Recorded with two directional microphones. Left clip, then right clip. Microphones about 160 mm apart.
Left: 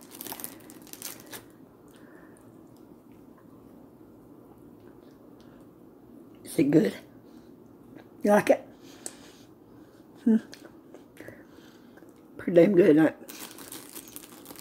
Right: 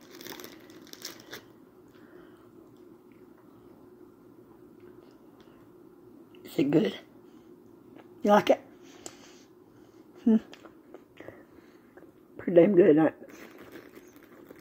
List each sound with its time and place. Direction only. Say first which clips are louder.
0.4 s crumpling: left 1 dB; 20° right (ahead or behind)
6.4 s a woman's voice: left 3 dB; 5° left (ahead or behind)
7.9 s a sound: even; 5° right (ahead or behind)
10.2 s speech: even; 10° right (ahead or behind)
12.4 s speech: even; 10° right (ahead or behind)